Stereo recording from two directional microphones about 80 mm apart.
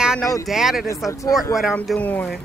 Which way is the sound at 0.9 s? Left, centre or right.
Left.